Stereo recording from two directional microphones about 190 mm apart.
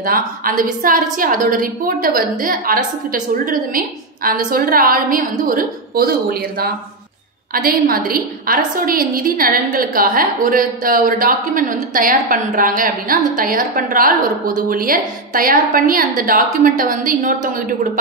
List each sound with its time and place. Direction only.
0.0 s a woman's voice: 50° right (ahead or behind)
7.5 s a woman's voice: 50° right (ahead or behind)